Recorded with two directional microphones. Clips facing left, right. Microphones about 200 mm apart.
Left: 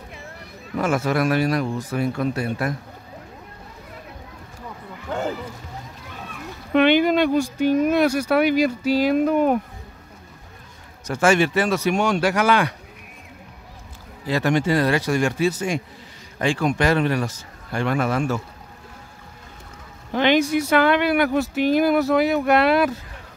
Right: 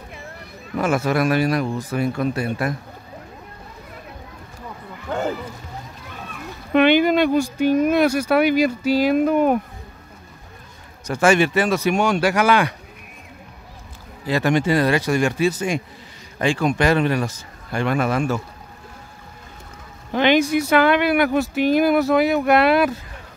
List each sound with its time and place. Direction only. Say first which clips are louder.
0.7 s speech: right 1 dB; 10° right (ahead or behind)
5.1 s speech: right 2 dB; 60° right (ahead or behind)
6.7 s speech: right 1 dB; 10° right (ahead or behind)
11.1 s speech: right 1 dB; 15° right (ahead or behind)
14.2 s speech: right 1 dB; 15° right (ahead or behind)
20.1 s speech: right 1 dB; 15° right (ahead or behind)